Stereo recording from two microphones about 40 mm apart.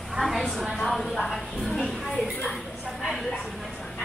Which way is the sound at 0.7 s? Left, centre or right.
Centre.